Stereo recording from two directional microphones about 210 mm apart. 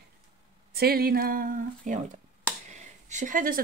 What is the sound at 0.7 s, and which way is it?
Speech, 45° right (ahead or behind).